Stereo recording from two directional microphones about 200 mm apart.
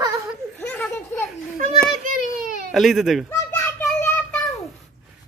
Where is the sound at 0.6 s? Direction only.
10° left (ahead or behind).